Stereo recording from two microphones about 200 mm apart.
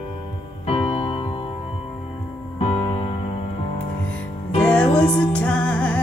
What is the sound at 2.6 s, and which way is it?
Music, 30° left (ahead or behind).